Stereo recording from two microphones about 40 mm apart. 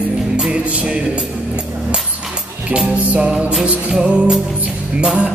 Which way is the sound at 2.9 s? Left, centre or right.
Right.